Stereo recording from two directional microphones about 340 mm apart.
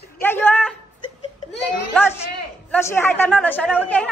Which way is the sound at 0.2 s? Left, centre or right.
Centre.